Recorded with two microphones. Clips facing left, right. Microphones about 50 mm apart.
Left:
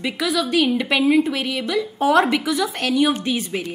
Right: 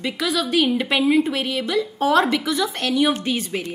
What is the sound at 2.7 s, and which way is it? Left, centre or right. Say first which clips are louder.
Speech: left 1 dB; centre.